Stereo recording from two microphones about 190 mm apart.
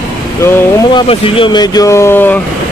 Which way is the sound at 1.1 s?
30° left (ahead or behind).